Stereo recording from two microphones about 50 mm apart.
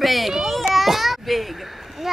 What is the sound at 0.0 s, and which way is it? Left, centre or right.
Children playing, centre.